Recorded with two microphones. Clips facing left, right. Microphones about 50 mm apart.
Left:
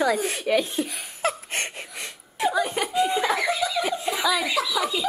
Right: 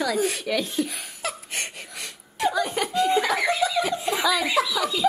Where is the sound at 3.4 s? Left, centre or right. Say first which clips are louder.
Right 2 dB; centre.